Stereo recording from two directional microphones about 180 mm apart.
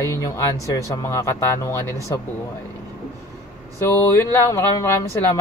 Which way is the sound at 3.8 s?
15° left (ahead or behind).